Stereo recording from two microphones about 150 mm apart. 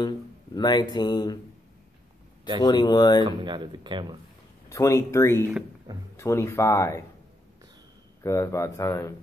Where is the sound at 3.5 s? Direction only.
30° right (ahead or behind).